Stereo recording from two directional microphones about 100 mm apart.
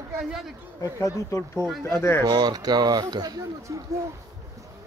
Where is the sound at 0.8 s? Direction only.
30° left (ahead or behind).